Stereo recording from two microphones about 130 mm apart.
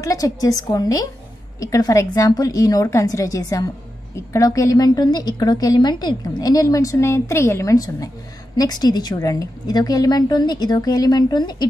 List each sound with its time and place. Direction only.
0.0 s a woman's voice: 25° left (ahead or behind)